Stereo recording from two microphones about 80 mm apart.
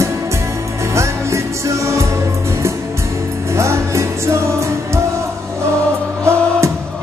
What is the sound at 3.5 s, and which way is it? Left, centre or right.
Music, right.